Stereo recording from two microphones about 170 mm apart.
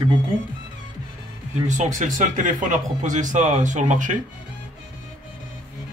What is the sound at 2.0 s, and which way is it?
Speech, 50° right (ahead or behind).